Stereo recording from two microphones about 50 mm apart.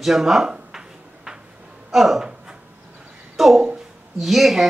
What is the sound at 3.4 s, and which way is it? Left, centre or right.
Speech, centre.